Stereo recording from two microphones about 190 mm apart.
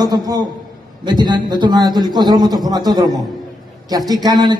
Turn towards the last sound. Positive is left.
turn(degrees=-20)  # may be behind; listen again after turning